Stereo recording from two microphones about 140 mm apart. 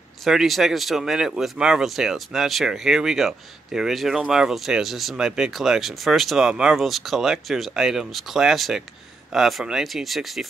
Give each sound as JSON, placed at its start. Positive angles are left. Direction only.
{"t": 0.2, "sound": "speech", "side_deg": 0}